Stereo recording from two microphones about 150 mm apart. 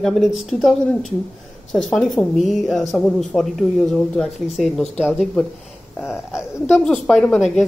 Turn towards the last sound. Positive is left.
turn(degrees=0)  # may be behind; listen again after turning